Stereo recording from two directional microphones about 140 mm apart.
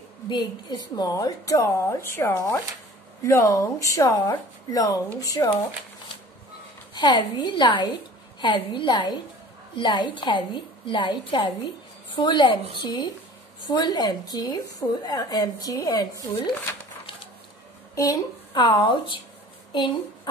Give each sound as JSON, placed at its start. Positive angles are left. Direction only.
{"t": 0.3, "sound": "speech", "side_deg": 30}
{"t": 6.9, "sound": "a woman's voice", "side_deg": 30}
{"t": 17.9, "sound": "a woman's voice", "side_deg": 25}